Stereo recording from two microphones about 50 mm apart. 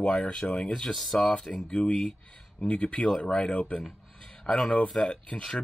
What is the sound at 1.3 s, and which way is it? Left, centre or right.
Speech, centre.